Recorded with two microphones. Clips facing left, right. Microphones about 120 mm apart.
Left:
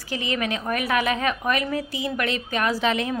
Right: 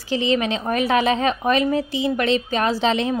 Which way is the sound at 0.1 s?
25° right (ahead or behind).